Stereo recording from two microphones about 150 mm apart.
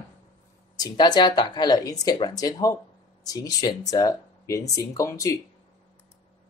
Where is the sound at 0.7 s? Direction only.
30° left (ahead or behind).